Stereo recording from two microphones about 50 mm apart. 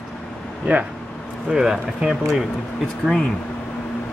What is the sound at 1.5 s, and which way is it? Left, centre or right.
Speech, centre.